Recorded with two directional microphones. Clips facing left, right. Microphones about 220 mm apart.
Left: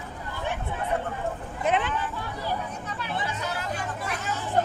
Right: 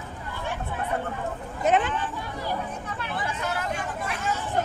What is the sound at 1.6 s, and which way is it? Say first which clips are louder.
Speech: right 3 dB; 45° right (ahead or behind).